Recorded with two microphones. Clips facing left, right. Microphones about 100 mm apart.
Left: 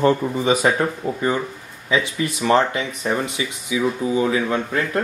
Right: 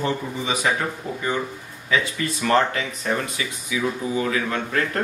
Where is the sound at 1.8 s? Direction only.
25° left (ahead or behind).